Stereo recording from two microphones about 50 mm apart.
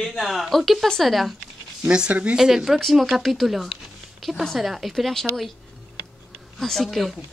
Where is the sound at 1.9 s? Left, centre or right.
Centre.